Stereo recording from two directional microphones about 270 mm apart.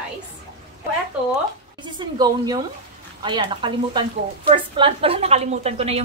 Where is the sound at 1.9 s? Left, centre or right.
Centre.